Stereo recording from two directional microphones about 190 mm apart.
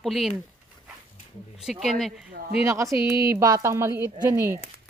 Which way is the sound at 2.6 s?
15° right (ahead or behind).